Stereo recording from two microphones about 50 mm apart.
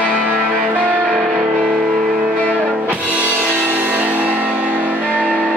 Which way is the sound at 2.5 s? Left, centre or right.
Right.